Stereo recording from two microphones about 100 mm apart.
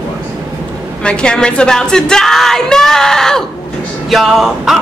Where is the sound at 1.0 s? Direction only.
10° left (ahead or behind).